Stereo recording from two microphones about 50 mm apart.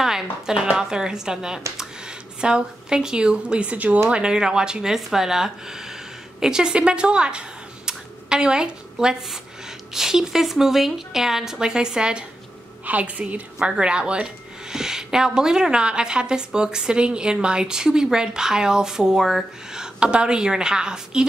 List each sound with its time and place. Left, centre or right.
0.0 s a woman's voice: centre; by 4.0 s right
4.1 s speech: centre
12.8 s a woman's voice: right